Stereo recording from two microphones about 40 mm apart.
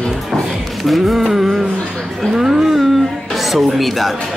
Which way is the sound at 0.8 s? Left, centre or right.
Centre.